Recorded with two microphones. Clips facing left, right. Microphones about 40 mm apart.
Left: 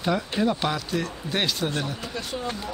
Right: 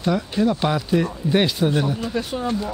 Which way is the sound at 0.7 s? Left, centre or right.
Centre.